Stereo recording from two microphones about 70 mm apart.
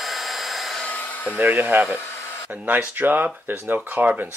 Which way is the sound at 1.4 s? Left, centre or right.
Right.